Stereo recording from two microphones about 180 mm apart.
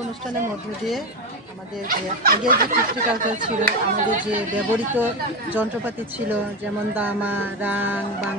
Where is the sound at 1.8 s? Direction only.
55° right (ahead or behind).